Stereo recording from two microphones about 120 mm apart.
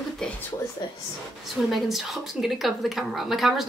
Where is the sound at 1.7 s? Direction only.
Centre (ahead or behind).